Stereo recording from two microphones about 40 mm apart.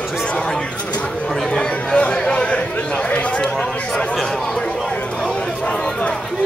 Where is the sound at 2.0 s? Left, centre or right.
Left.